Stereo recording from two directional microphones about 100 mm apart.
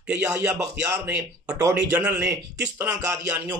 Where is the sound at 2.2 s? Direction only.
30° right (ahead or behind).